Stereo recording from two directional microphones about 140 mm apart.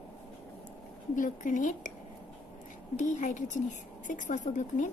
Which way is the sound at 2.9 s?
65° left (ahead or behind).